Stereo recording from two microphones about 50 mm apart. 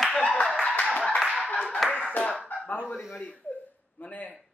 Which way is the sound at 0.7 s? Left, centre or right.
Left.